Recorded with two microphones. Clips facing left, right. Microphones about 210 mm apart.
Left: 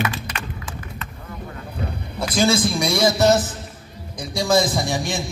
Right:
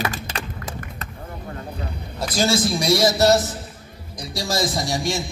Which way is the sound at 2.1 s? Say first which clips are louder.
Left 2 dB; 55° left (ahead or behind).